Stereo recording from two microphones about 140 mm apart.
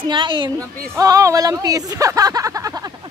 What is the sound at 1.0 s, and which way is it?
Speech, 25° right (ahead or behind).